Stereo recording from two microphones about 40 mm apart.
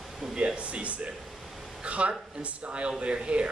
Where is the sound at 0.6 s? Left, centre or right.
Right.